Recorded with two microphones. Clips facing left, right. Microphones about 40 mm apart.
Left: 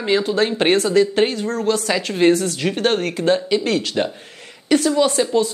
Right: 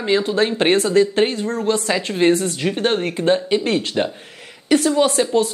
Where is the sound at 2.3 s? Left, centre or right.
Right.